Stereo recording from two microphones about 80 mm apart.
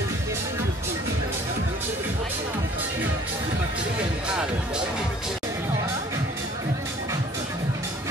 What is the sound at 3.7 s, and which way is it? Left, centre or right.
Music, centre.